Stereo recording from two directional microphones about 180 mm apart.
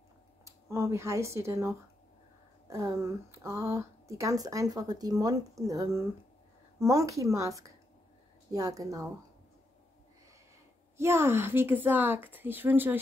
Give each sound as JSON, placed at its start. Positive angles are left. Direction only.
{"t": 0.5, "sound": "a woman's voice", "side_deg": -15}
{"t": 11.0, "sound": "speech", "side_deg": -15}